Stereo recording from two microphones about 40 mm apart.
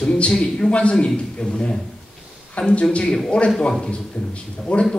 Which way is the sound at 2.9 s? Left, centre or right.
Centre.